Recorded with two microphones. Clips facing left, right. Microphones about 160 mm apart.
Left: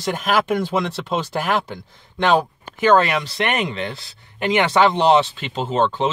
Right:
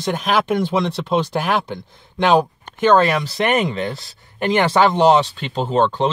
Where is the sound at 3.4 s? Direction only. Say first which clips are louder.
Right 6 dB; 40° right (ahead or behind).